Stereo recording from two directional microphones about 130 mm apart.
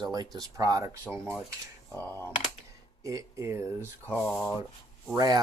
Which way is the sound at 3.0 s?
25° right (ahead or behind).